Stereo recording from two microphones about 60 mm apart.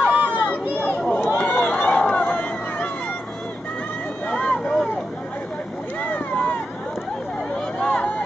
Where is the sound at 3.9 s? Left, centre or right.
Left.